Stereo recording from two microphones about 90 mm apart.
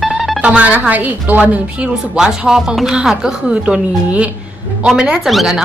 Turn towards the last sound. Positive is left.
turn(degrees=-5)  # may be behind; listen again after turning